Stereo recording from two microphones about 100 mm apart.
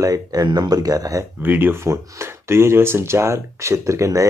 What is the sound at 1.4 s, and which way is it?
Speech, 20° right (ahead or behind).